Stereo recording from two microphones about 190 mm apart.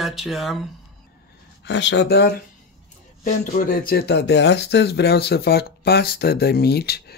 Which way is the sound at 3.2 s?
45° left (ahead or behind).